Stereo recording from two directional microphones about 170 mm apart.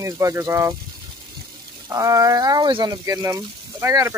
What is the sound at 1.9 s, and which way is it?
Speech, 20° right (ahead or behind).